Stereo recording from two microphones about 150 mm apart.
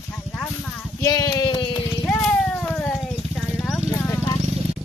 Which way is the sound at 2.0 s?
5° left (ahead or behind).